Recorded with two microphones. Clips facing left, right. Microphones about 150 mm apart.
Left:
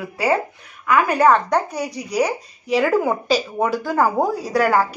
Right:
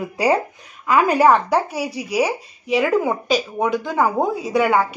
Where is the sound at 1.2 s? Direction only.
5° right (ahead or behind).